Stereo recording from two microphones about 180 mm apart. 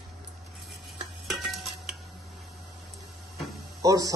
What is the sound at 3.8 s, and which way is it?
Speech, 20° right (ahead or behind).